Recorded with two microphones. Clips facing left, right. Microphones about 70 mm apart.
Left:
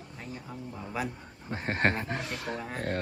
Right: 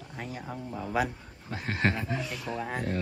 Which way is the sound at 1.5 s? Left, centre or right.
Left.